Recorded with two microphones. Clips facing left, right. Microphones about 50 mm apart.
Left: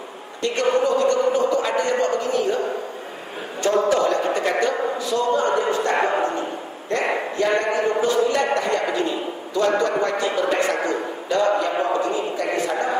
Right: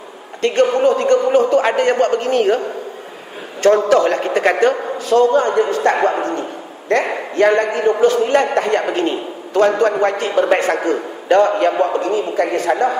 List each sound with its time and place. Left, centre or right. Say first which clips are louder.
0.4 s a man's voice: right 6 dB; right
3.6 s a man's voice: right 6 dB; right